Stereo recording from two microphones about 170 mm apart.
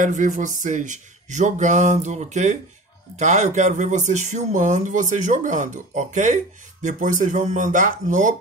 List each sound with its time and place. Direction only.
0.0 s speech: 45° right (ahead or behind)